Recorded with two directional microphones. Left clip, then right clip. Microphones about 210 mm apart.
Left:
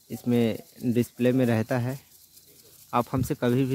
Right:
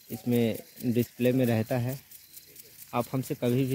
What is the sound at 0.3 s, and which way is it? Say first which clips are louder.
Speech: left 2 dB; 15° left (ahead or behind).